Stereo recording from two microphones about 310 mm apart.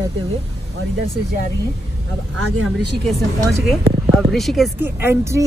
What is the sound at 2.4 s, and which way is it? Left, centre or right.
Speech, right.